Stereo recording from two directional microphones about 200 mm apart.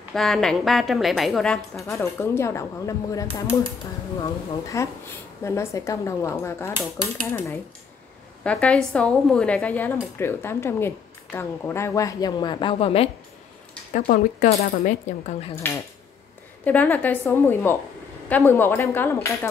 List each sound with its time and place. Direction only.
0.1 s a woman's voice: centre (ahead or behind)
1.9 s speech: 15° left (ahead or behind)
4.7 s a woman's voice: 15° left (ahead or behind)
13.9 s speech: 40° left (ahead or behind)
15.5 s speech: 10° left (ahead or behind)